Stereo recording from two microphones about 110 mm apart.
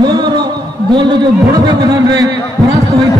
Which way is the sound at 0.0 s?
45° right (ahead or behind).